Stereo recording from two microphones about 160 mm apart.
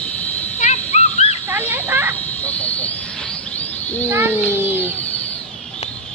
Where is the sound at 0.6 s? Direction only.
45° left (ahead or behind).